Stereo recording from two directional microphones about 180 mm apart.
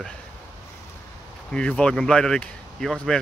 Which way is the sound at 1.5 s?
5° left (ahead or behind).